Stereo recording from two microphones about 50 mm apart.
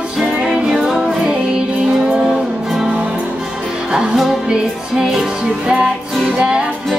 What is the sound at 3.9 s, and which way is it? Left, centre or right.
Music, centre.